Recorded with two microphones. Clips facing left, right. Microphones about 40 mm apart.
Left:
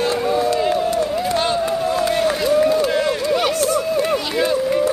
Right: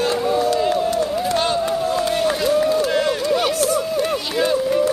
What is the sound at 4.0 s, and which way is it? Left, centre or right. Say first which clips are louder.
Run: left 1 dB; left.